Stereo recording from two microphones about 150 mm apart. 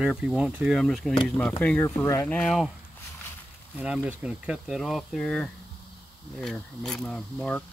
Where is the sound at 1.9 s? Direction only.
20° left (ahead or behind).